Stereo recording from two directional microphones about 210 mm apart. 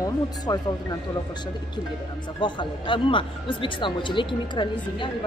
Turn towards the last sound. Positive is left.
turn(degrees=25)  # may be behind; listen again after turning